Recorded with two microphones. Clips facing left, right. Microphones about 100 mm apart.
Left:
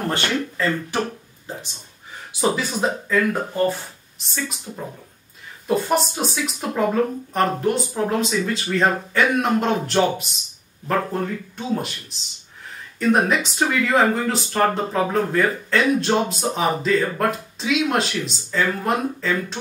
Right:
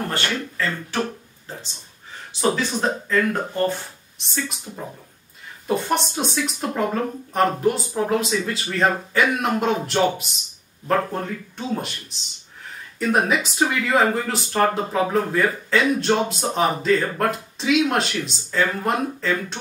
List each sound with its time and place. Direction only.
0.1 s speech: 20° left (ahead or behind)
2.5 s speech: 10° left (ahead or behind)